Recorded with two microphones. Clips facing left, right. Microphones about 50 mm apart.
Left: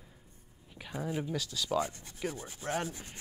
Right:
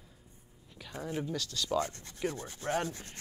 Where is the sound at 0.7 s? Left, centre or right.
Centre.